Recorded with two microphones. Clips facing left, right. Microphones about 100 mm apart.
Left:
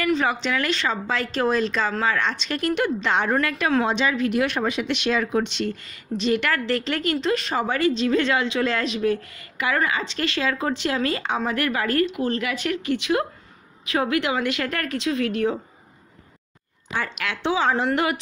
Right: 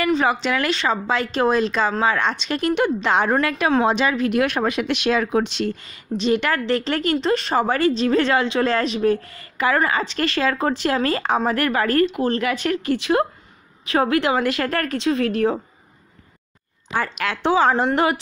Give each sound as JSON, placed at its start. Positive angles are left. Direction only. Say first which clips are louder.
{"t": 0.0, "sound": "a woman's voice", "louder": "right 3 dB", "side_deg": -35}
{"t": 1.0, "sound": "a woman's voice", "louder": "right 3 dB", "side_deg": -30}
{"t": 2.8, "sound": "speech", "louder": "right 4 dB", "side_deg": -40}
{"t": 4.3, "sound": "speech", "louder": "right 3 dB", "side_deg": -55}
{"t": 17.0, "sound": "speech", "louder": "right 4 dB", "side_deg": -40}
{"t": 17.8, "sound": "speech", "louder": "right 3 dB", "side_deg": -35}